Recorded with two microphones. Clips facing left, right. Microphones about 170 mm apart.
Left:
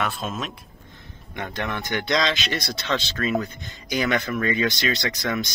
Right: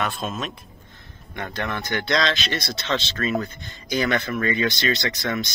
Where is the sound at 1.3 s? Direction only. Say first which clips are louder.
Even; 15° left (ahead or behind).